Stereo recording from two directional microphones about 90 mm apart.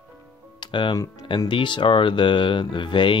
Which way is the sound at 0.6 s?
65° left (ahead or behind).